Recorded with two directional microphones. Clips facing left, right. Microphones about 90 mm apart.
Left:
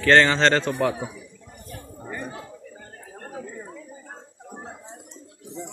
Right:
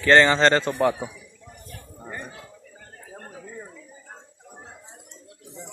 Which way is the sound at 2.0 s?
5° right (ahead or behind).